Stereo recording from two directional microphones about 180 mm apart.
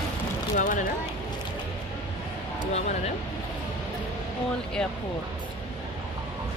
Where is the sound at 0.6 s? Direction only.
45° left (ahead or behind).